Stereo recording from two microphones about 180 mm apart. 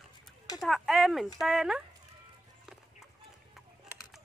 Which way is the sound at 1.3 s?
Centre (ahead or behind).